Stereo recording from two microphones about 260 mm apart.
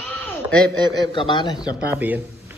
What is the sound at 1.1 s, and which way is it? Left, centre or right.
Speech, centre.